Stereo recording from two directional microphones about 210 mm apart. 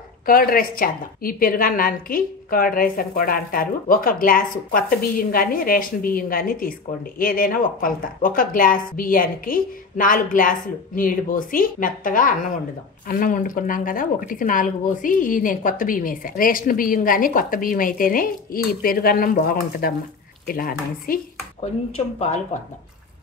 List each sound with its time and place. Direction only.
0.3 s a woman's voice: 45° left (ahead or behind)
21.5 s speech: 30° left (ahead or behind)